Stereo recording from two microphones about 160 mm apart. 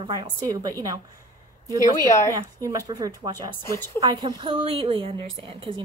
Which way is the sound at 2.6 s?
20° right (ahead or behind).